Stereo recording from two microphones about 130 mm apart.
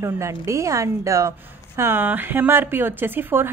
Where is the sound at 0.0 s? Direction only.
20° right (ahead or behind).